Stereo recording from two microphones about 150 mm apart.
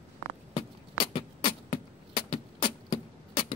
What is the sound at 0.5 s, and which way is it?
Beatboxing, 35° left (ahead or behind).